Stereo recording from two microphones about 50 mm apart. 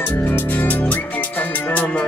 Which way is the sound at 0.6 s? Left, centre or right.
Left.